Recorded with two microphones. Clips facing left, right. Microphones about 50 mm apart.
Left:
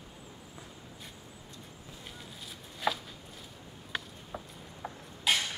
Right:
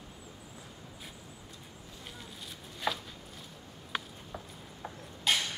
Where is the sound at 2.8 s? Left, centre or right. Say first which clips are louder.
Left 2 dB; centre.